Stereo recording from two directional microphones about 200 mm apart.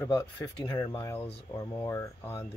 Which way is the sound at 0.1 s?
20° left (ahead or behind).